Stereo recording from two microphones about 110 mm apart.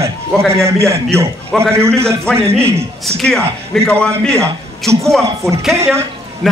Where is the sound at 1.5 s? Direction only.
10° left (ahead or behind).